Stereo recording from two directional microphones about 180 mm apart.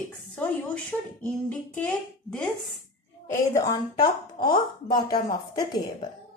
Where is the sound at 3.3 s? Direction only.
15° left (ahead or behind).